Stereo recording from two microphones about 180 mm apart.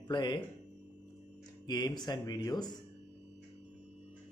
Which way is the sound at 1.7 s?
20° left (ahead or behind).